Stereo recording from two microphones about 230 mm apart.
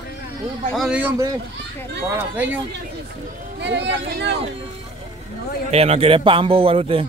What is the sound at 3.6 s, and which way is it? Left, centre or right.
Speech, right.